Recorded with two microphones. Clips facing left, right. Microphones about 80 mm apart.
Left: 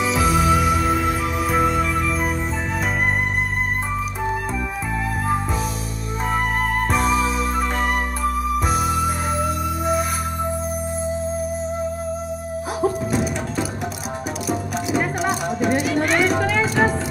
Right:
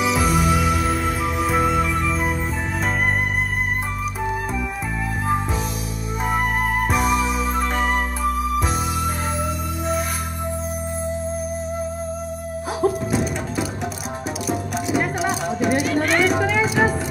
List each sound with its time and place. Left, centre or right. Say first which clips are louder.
0.0 s music: left 1 dB; centre
6.2 s music: even; centre
12.8 s music: right 1 dB; centre